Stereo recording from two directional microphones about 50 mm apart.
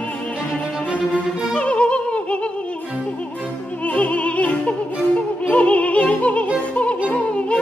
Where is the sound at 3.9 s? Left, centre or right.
Left.